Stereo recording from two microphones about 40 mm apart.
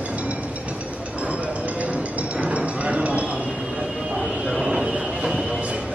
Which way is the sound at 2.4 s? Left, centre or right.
Right.